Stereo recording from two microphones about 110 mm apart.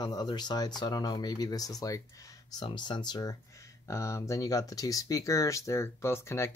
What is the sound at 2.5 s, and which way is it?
Speech, 45° left (ahead or behind).